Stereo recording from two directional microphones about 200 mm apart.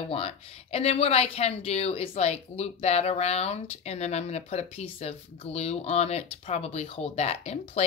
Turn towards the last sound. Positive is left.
turn(degrees=30)  # may be behind; listen again after turning